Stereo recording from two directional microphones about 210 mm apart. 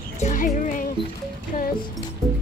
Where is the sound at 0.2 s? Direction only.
35° left (ahead or behind).